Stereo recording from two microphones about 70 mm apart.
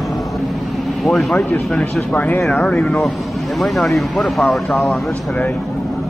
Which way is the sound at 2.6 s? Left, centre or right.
Centre.